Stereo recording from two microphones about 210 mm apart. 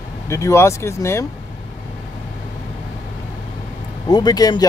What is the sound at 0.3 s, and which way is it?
Speech, 15° left (ahead or behind).